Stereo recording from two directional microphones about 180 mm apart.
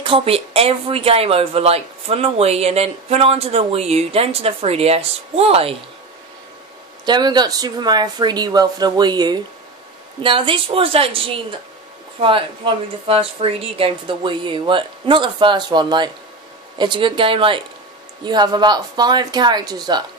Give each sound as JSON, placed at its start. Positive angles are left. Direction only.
{"t": 0.0, "sound": "speech", "side_deg": -30}
{"t": 7.1, "sound": "speech", "side_deg": -25}